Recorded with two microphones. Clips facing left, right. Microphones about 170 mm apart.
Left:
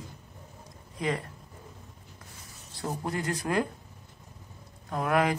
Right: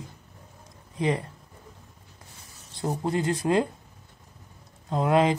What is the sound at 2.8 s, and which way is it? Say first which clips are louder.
Speech: right 5 dB; 20° right (ahead or behind).